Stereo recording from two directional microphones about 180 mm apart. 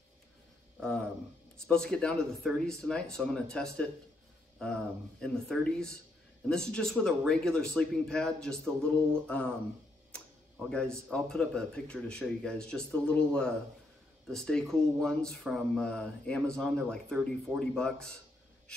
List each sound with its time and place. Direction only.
0.7 s speech: 5° left (ahead or behind)
5.2 s speech: 5° left (ahead or behind)
10.7 s speech: 5° left (ahead or behind)